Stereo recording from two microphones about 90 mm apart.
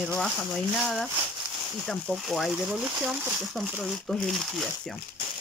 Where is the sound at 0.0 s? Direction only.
5° left (ahead or behind).